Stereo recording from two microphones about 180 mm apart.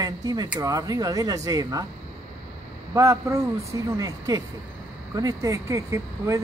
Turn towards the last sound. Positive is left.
turn(degrees=-15)  # may be behind; listen again after turning